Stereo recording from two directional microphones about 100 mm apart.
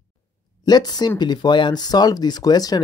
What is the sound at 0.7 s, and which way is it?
Speech, 45° left (ahead or behind).